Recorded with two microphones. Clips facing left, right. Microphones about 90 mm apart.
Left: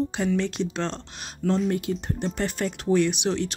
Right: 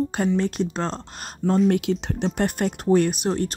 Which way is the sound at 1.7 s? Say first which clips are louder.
Right 5 dB; 90° right.